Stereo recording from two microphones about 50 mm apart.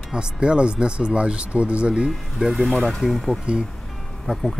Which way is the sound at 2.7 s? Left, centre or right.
Centre.